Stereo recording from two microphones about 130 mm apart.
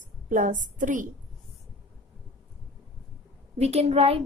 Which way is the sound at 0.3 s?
80° right.